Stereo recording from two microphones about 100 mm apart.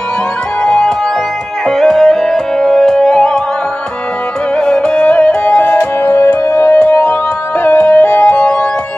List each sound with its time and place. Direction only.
0.6 s music: 10° left (ahead or behind)
4.6 s music: 10° left (ahead or behind)